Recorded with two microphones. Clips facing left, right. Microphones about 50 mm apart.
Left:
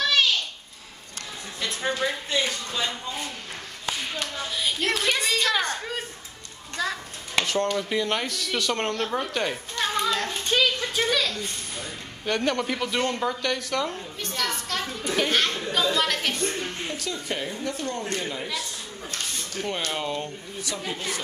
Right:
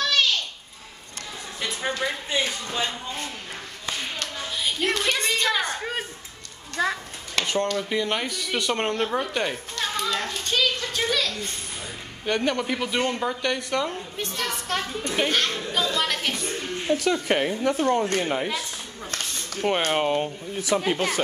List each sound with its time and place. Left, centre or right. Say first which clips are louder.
0.0 s a sound: even; centre
1.6 s a woman's voice: left 1 dB; centre
4.2 s speech: even; centre
6.8 s speech: right 4 dB; right
7.4 s speech: left 1 dB; centre
7.7 s a woman's voice: even; centre
9.8 s children playing: left 2 dB; centre
10.4 s a woman's voice: left 2 dB; centre
14.1 s a woman's voice: even; right
15.2 s speech: even; centre
16.9 s speech: right 9 dB; right
19.6 s speech: right 7 dB; right
20.7 s speech: right 10 dB; right